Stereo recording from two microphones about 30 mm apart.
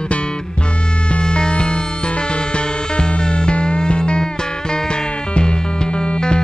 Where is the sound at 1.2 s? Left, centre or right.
Left.